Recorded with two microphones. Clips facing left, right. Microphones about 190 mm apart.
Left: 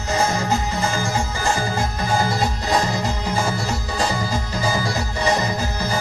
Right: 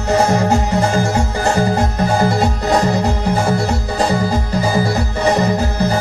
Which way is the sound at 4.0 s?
60° right (ahead or behind).